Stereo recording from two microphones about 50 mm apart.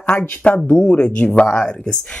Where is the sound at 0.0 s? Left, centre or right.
Left.